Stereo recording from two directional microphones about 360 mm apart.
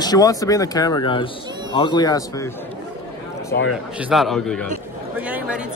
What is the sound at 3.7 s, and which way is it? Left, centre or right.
A man's voice, centre.